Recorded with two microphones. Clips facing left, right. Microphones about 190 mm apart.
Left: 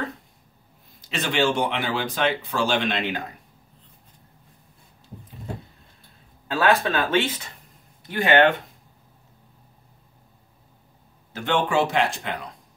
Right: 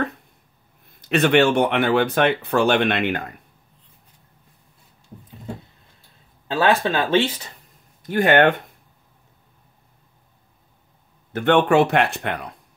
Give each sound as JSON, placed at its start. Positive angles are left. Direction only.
{"t": 0.8, "sound": "speech", "side_deg": -60}
{"t": 6.4, "sound": "speech", "side_deg": -30}
{"t": 8.0, "sound": "speech", "side_deg": -50}
{"t": 11.3, "sound": "speech", "side_deg": -60}